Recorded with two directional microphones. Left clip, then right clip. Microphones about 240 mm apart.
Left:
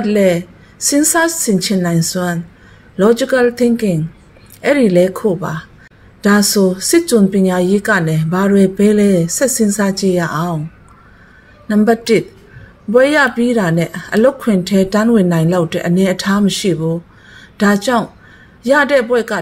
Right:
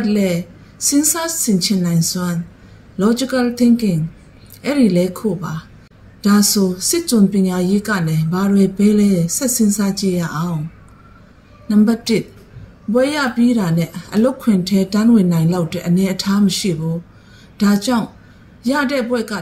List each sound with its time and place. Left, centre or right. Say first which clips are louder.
0.0 s a woman's voice: left 6 dB; left
11.6 s a woman's voice: left 4 dB; left